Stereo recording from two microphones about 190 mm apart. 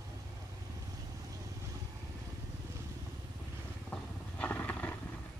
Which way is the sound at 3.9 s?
10° left (ahead or behind).